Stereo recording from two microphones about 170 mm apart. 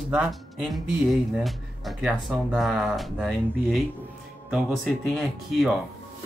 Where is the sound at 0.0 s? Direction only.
5° right (ahead or behind).